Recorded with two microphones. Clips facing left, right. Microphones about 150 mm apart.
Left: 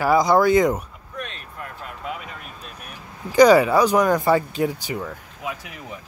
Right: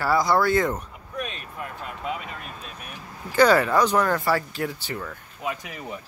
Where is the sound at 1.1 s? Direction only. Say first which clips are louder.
Right 2 dB; 5° right (ahead or behind).